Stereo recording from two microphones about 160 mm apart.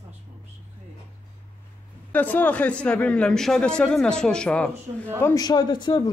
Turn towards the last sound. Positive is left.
turn(degrees=25)  # may be behind; listen again after turning